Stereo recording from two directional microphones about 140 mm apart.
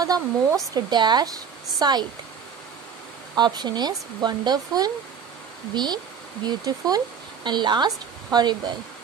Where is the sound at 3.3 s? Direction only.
30° right (ahead or behind).